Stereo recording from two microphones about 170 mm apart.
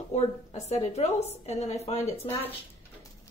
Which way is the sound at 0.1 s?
40° left (ahead or behind).